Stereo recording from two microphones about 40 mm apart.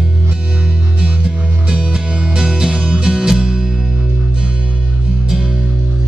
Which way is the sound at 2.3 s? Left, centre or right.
Centre.